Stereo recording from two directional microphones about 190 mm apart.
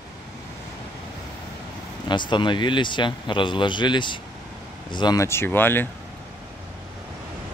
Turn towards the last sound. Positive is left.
turn(degrees=10)  # may be behind; listen again after turning